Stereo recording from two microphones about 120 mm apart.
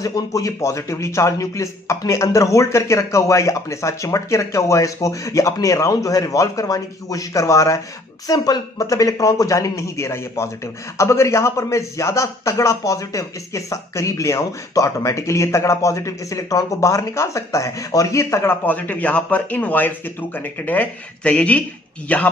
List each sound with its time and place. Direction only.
0.0 s a man's voice: 30° left (ahead or behind); by 22.3 s 10° left (ahead or behind)